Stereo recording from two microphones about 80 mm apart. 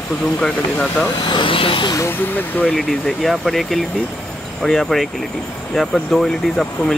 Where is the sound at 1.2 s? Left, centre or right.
Left.